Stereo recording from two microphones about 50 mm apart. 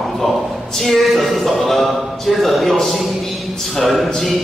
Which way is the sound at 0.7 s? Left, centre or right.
Centre.